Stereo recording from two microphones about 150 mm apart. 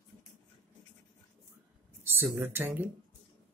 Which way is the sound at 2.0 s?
15° right (ahead or behind).